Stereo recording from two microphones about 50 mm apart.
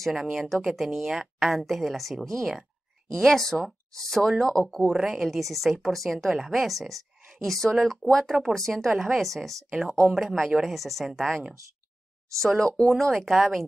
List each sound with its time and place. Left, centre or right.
0.1 s speech: centre
4.8 s speech: centre
12.6 s speech: centre
13.1 s speech: centre